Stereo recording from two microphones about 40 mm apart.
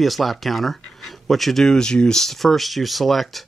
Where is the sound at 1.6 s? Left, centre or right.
Centre.